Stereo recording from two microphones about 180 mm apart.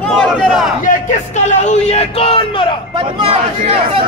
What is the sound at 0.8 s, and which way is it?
A man's voice, 45° left (ahead or behind).